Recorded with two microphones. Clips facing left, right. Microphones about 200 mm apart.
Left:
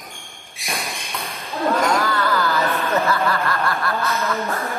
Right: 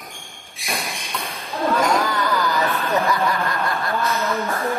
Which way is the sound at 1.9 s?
15° right (ahead or behind).